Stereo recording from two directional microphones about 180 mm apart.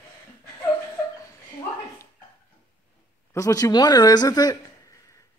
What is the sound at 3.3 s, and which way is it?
Speech, 20° left (ahead or behind).